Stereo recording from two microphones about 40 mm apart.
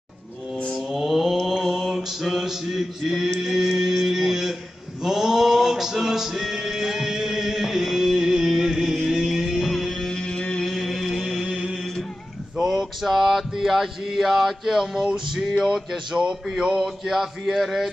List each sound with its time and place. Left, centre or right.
0.9 s mantra: centre
3.3 s music: centre
5.0 s male singing: centre
8.9 s music: centre
9.2 s music: centre
9.7 s music: centre
10.0 s a sound: centre
10.6 s music: centre
11.5 s a sound: centre
12.6 s mantra: centre
15.1 s a man's voice: centre